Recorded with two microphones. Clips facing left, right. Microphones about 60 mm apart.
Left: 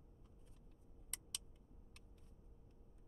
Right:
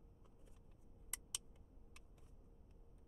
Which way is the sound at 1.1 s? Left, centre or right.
Centre.